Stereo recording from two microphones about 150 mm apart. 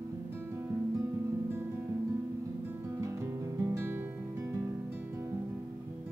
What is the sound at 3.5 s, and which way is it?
Music, 20° right (ahead or behind).